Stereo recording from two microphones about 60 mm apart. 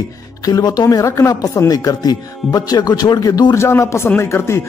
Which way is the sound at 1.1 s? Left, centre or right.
Left.